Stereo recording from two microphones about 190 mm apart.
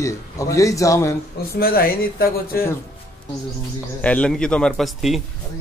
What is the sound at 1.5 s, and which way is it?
Speech, 50° left (ahead or behind).